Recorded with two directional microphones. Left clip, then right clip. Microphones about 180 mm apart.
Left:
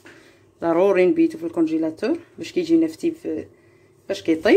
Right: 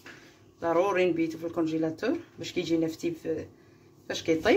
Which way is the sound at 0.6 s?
45° left (ahead or behind).